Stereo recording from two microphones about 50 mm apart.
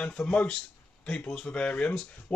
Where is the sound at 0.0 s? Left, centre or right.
Left.